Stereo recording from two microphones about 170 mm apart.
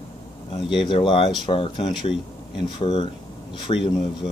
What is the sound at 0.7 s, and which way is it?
Speech, 30° left (ahead or behind).